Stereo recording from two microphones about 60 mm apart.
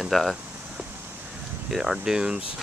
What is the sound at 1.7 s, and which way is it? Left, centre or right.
Speech, centre.